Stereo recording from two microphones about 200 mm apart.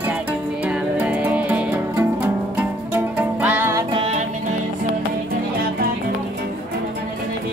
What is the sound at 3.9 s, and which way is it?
Music, 30° right (ahead or behind).